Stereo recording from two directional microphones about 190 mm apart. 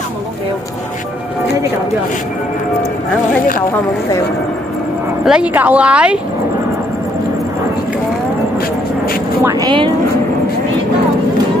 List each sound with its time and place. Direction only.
5.2 s speech: 5° right (ahead or behind)
9.4 s speech: 20° right (ahead or behind)